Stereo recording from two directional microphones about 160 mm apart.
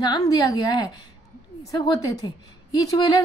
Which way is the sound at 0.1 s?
25° left (ahead or behind).